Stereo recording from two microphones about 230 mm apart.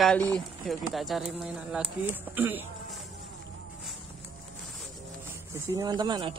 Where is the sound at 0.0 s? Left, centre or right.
Centre.